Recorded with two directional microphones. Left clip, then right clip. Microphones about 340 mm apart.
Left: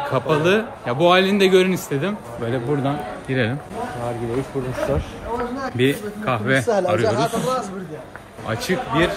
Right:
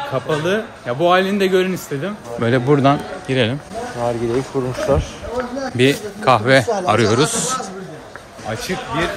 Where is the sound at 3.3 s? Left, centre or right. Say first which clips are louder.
Right 4 dB; centre.